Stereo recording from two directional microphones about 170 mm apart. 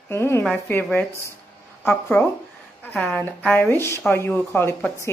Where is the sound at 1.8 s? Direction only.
10° left (ahead or behind).